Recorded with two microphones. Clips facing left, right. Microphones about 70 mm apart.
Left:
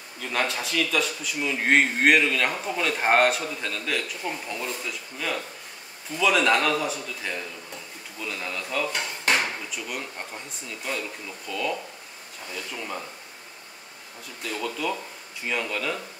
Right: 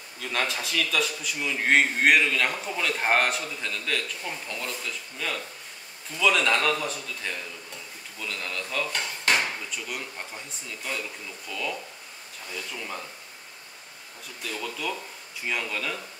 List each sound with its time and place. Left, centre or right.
0.2 s a man's voice: centre
8.2 s dishes: centre
11.5 s a man's voice: centre
12.7 s speech: centre
14.4 s a man's voice: centre